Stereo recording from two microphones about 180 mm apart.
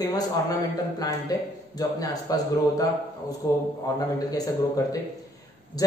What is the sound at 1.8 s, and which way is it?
Speech, 20° left (ahead or behind).